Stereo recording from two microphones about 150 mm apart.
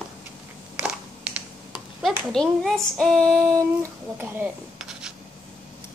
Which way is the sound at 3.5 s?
15° right (ahead or behind).